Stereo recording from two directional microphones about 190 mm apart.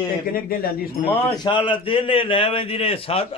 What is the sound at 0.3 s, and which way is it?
Speech, 50° left (ahead or behind).